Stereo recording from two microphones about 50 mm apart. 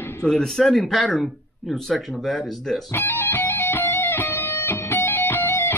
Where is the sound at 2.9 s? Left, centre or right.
Left.